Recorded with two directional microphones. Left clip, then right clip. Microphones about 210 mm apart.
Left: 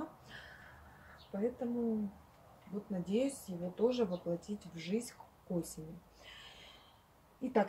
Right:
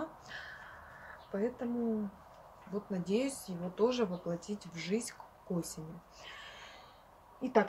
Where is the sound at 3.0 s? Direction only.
10° right (ahead or behind).